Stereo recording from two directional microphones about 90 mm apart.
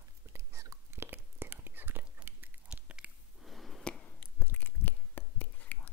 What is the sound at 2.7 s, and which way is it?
Biting, 10° right (ahead or behind).